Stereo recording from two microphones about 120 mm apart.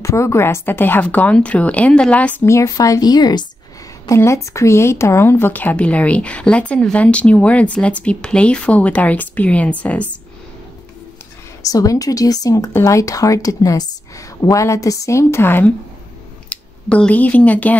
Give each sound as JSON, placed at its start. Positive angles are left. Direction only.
{"t": 0.0, "sound": "speech", "side_deg": 25}
{"t": 11.6, "sound": "speech", "side_deg": 30}